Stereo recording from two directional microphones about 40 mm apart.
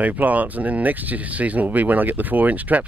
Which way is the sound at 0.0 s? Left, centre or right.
Right.